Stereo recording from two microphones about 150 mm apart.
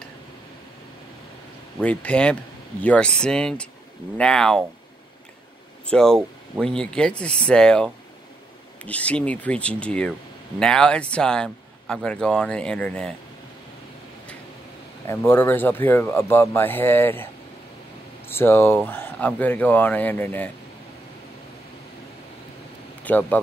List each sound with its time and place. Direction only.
1.8 s speech: 10° left (ahead or behind)
5.9 s speech: 5° left (ahead or behind)
15.0 s speech: 15° left (ahead or behind)
18.3 s speech: 15° left (ahead or behind)
23.0 s speech: 10° left (ahead or behind)